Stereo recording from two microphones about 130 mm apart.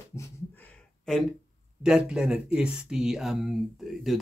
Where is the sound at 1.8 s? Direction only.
5° right (ahead or behind).